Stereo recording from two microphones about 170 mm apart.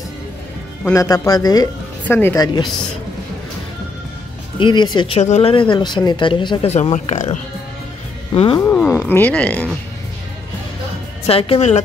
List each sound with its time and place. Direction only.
0.8 s speech: 20° left (ahead or behind)
2.0 s speech: 10° left (ahead or behind)
2.3 s speech: 25° left (ahead or behind)
4.6 s speech: 25° left (ahead or behind)
8.5 s speech: 15° left (ahead or behind)
11.2 s speech: 35° left (ahead or behind)